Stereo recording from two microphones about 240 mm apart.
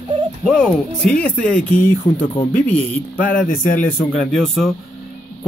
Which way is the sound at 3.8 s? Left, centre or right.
Centre.